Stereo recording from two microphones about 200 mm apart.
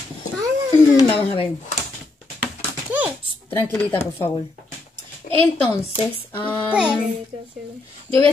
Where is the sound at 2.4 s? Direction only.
5° right (ahead or behind).